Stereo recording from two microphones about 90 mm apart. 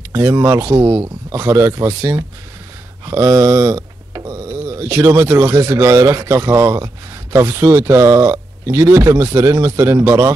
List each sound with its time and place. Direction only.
0.1 s speech: 35° right (ahead or behind)